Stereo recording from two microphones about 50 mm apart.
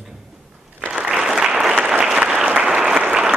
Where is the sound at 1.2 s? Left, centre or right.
Centre.